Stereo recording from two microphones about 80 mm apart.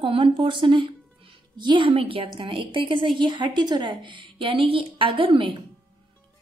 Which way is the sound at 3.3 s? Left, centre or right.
Right.